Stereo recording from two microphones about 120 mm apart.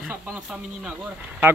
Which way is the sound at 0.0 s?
10° right (ahead or behind).